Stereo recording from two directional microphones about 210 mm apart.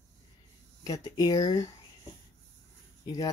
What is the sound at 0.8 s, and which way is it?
Speech, 15° left (ahead or behind).